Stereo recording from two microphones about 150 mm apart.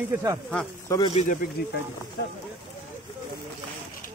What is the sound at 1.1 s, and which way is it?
Speech, 45° left (ahead or behind).